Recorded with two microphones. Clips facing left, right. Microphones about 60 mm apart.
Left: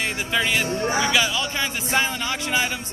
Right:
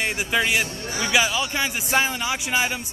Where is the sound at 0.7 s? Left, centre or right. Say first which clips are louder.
Left 9 dB; left.